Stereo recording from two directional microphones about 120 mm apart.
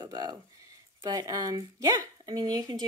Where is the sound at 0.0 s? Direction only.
35° right (ahead or behind).